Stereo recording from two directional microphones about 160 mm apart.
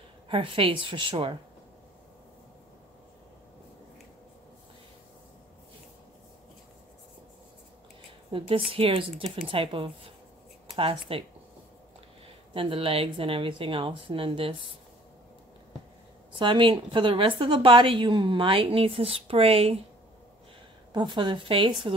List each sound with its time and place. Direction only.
0.3 s a woman's voice: 35° right (ahead or behind)
8.3 s a woman's voice: 35° right (ahead or behind)
12.5 s a woman's voice: 35° right (ahead or behind)
16.3 s a woman's voice: 30° right (ahead or behind)
20.9 s a woman's voice: 30° right (ahead or behind)